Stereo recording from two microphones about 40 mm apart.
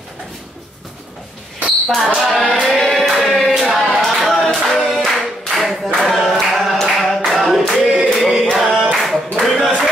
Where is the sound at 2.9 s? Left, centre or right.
Centre.